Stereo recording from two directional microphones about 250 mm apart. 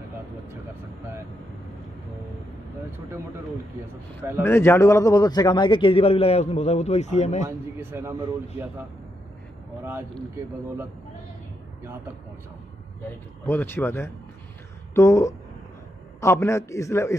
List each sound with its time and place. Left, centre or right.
4.4 s a man's voice: centre; by 7.4 s left
7.4 s a man's voice: centre
13.5 s a man's voice: centre